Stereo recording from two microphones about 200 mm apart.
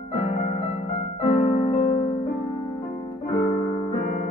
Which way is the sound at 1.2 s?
35° left (ahead or behind).